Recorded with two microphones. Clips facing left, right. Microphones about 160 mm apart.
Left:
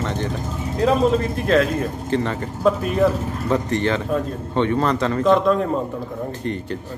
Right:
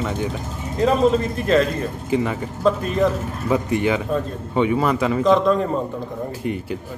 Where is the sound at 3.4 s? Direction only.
10° right (ahead or behind).